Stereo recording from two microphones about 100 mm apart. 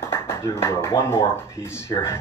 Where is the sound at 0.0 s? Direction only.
25° left (ahead or behind).